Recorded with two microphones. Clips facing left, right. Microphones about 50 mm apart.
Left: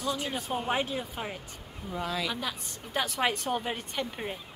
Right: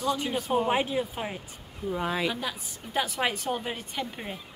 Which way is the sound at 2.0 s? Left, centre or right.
Right.